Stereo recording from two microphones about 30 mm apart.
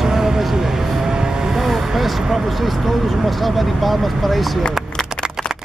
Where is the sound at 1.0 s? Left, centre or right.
Right.